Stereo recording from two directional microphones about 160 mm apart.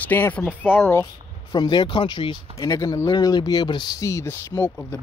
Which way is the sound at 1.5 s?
25° left (ahead or behind).